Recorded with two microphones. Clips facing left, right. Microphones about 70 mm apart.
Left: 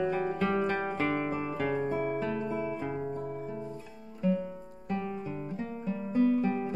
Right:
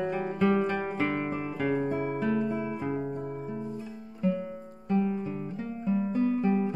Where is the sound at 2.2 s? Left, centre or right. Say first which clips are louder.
Right 4 dB; centre.